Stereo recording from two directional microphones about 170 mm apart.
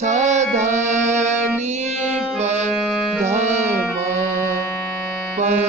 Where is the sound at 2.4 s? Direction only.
40° right (ahead or behind).